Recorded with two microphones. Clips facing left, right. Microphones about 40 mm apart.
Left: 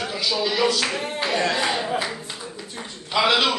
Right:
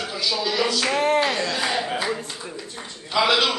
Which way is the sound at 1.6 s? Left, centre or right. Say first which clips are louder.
Left 1 dB; centre.